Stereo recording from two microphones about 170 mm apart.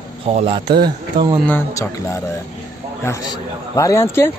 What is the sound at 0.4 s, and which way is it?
Speech, 35° right (ahead or behind).